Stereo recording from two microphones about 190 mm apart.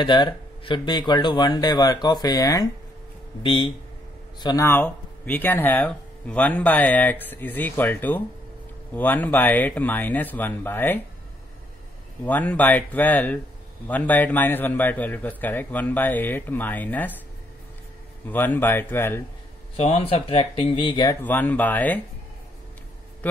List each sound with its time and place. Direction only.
0.0 s speech: 25° left (ahead or behind)
12.3 s speech: 10° left (ahead or behind)
18.3 s speech: 10° left (ahead or behind)
19.8 s speech: 30° left (ahead or behind)
21.2 s speech: 10° left (ahead or behind)